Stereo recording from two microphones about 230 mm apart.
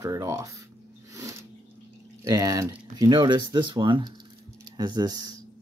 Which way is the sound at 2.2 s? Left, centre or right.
Centre.